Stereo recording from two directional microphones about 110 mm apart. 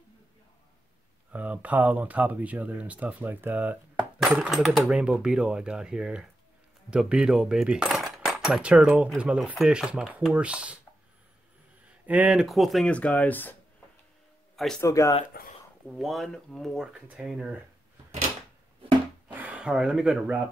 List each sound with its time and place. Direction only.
1.3 s speech: 15° right (ahead or behind)
6.9 s cutlery: 10° right (ahead or behind)
9.1 s speech: 5° right (ahead or behind)
12.1 s speech: 10° right (ahead or behind)
12.4 s speech: centre (ahead or behind)
12.9 s speech: 10° left (ahead or behind)
14.8 s speech: 30° left (ahead or behind)
16.0 s speech: centre (ahead or behind)
19.2 s speech: 15° right (ahead or behind)